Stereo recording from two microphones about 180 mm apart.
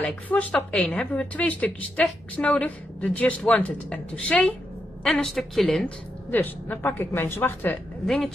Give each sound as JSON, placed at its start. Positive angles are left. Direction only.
{"t": 0.0, "sound": "a woman's voice", "side_deg": 10}